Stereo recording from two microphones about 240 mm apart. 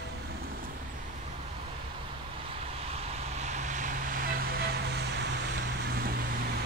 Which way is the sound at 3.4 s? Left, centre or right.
Right.